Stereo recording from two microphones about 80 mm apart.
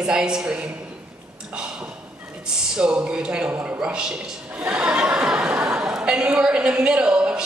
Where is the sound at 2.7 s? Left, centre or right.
Centre.